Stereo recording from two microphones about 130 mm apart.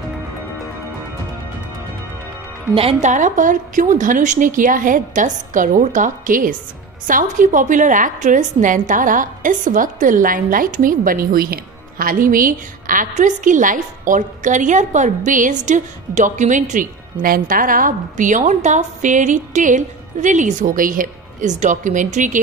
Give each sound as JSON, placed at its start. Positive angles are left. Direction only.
{"t": 2.7, "sound": "a woman's voice", "side_deg": -45}
{"t": 3.0, "sound": "a woman's voice", "side_deg": -70}